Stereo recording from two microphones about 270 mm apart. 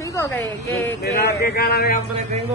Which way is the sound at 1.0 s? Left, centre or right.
Left.